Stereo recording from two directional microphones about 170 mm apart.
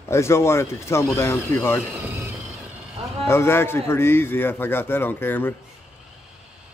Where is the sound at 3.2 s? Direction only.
15° left (ahead or behind).